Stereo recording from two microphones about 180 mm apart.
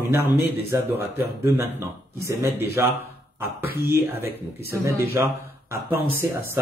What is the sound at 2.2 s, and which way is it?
A man's voice, 15° right (ahead or behind).